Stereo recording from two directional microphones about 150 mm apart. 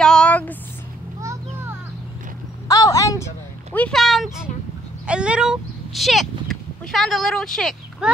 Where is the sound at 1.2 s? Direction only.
20° right (ahead or behind).